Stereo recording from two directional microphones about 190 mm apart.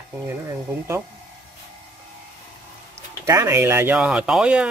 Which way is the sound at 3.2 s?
15° right (ahead or behind).